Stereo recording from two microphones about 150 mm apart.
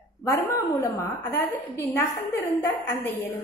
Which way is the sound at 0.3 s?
20° left (ahead or behind).